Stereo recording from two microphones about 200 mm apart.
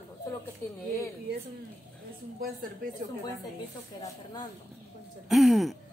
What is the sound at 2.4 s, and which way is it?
Speech, 40° right (ahead or behind).